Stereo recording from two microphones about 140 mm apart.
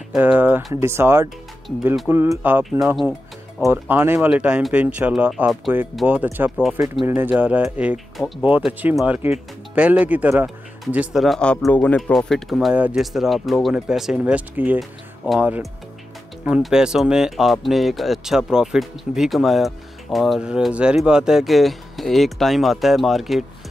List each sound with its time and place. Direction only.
0.2 s speech: 15° right (ahead or behind)
3.0 s music: centre (ahead or behind)
3.6 s speech: 15° right (ahead or behind)